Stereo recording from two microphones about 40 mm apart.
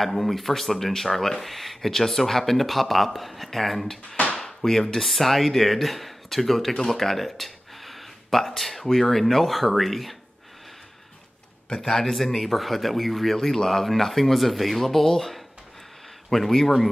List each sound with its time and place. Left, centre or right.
0.0 s speech: centre
11.7 s speech: centre